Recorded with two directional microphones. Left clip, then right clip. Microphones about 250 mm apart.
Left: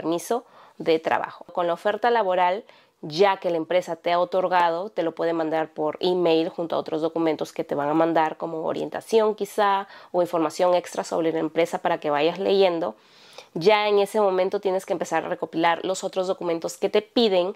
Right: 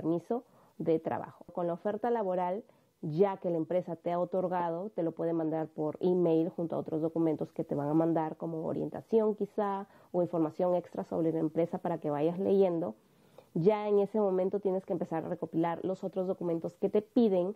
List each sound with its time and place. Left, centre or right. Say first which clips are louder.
0.0 s a woman's voice: left 8 dB; centre
8.4 s speech: left 8 dB; left
8.6 s a woman's voice: left 9 dB; centre